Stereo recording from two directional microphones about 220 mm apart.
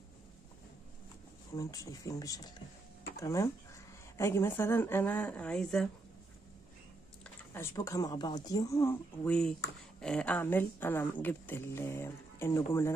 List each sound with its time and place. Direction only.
1.5 s speech: 15° left (ahead or behind)
7.5 s speech: 15° left (ahead or behind)